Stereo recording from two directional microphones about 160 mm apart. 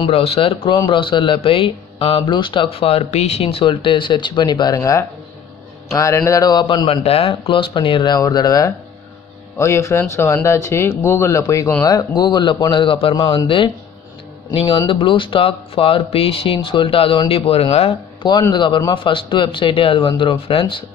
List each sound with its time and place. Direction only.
0.0 s a man's voice: 40° left (ahead or behind); by 6.6 s 20° left (ahead or behind)
6.6 s a man's voice: 35° left (ahead or behind)